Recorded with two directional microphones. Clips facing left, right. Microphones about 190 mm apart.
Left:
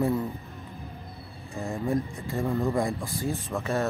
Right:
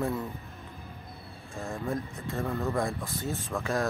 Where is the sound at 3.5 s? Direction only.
Centre (ahead or behind).